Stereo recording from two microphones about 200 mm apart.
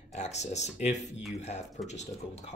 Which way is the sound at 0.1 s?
35° left (ahead or behind).